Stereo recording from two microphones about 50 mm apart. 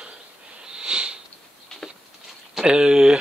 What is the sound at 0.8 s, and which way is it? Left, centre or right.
Sniff, centre.